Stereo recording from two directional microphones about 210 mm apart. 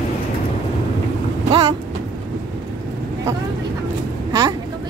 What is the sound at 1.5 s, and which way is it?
Vehicle, 25° right (ahead or behind).